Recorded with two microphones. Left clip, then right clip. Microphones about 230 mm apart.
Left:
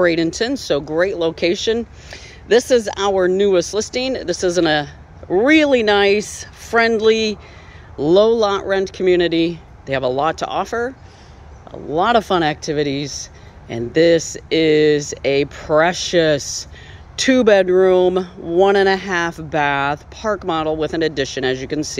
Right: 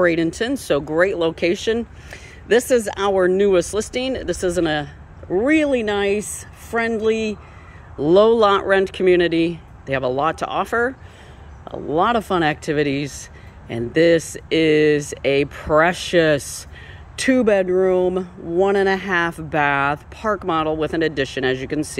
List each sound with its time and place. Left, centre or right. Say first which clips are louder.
0.0 s speech: left 2 dB; centre
8.1 s speech: even; centre